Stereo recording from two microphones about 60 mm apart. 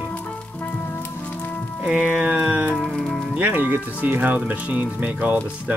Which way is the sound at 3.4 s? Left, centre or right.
Right.